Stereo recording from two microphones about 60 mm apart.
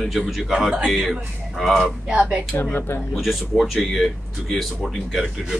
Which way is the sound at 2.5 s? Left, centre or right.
Left.